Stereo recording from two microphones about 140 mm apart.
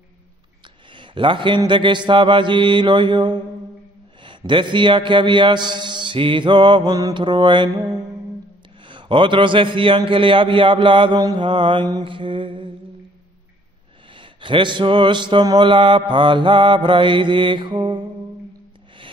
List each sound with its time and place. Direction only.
0.9 s mantra: 35° right (ahead or behind)
14.1 s mantra: 35° right (ahead or behind)